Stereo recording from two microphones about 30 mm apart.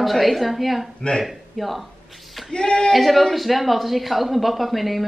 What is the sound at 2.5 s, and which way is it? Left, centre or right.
Speech, left.